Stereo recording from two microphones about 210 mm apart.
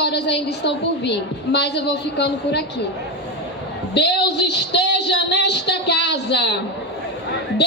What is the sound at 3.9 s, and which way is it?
A woman's voice, 55° left (ahead or behind).